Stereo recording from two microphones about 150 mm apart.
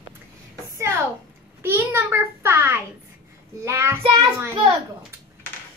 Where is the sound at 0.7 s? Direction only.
20° right (ahead or behind).